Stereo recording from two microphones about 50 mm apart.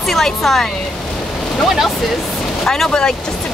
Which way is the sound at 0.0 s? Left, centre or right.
Centre.